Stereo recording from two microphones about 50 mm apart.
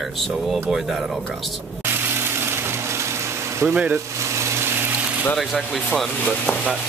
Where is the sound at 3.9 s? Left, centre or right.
Right.